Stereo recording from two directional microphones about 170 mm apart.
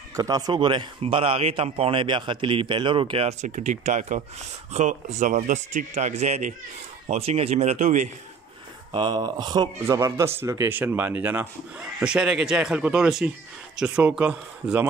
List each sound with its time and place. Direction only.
0.1 s speech: 20° right (ahead or behind); by 8.1 s 45° right (ahead or behind)
8.9 s speech: 25° right (ahead or behind); by 14.9 s 10° right (ahead or behind)